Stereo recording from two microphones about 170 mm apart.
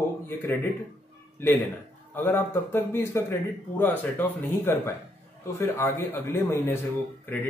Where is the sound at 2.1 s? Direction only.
10° left (ahead or behind).